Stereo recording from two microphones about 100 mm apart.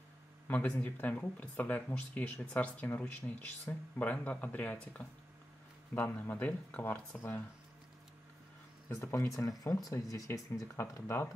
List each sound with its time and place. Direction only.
0.5 s speech: 20° left (ahead or behind)
8.8 s speech: 30° left (ahead or behind)